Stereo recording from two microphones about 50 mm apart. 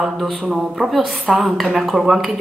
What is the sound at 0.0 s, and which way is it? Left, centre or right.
A woman's voice, centre.